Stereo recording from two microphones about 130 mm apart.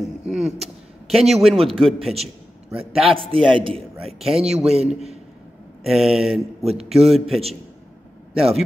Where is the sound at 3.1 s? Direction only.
40° right (ahead or behind).